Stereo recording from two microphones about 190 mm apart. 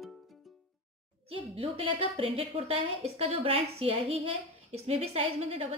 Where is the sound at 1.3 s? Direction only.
30° right (ahead or behind).